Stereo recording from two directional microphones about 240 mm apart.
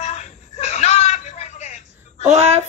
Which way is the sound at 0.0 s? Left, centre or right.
Left.